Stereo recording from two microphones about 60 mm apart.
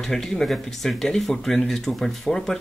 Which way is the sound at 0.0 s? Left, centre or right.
Centre.